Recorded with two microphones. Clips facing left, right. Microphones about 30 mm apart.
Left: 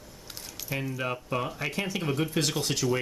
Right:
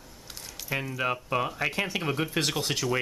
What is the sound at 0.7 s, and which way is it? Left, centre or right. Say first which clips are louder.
Speech: right 3 dB; centre.